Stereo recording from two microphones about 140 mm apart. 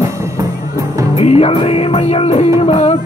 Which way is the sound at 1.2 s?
45° left (ahead or behind).